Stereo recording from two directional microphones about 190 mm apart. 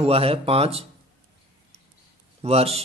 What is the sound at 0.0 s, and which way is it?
Speech, 30° right (ahead or behind).